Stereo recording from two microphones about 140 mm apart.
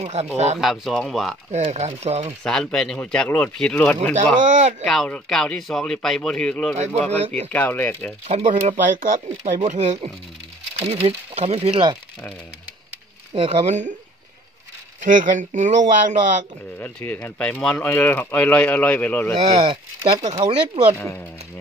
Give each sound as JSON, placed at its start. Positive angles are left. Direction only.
{"t": 0.0, "sound": "speech", "side_deg": -50}
{"t": 0.6, "sound": "speech", "side_deg": 0}
{"t": 1.5, "sound": "speech", "side_deg": -50}
{"t": 2.4, "sound": "speech", "side_deg": 5}
{"t": 4.4, "sound": "speech", "side_deg": -65}
{"t": 4.8, "sound": "speech", "side_deg": 5}
{"t": 8.3, "sound": "speech", "side_deg": -55}
{"t": 9.7, "sound": "speech", "side_deg": -55}
{"t": 13.3, "sound": "speech", "side_deg": -50}
{"t": 15.0, "sound": "speech", "side_deg": -65}
{"t": 16.8, "sound": "speech", "side_deg": 10}
{"t": 19.6, "sound": "speech", "side_deg": -45}